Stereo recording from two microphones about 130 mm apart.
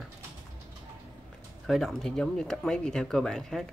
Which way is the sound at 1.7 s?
Centre (ahead or behind).